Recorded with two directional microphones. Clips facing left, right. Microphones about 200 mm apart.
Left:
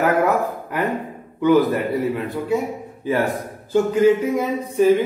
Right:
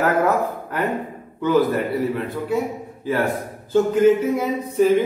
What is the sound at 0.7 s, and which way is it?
A man's voice, 15° left (ahead or behind).